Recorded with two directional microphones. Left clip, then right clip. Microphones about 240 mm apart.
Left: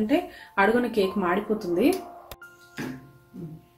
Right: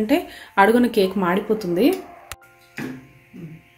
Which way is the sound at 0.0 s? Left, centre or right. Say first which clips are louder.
Right 4 dB; right.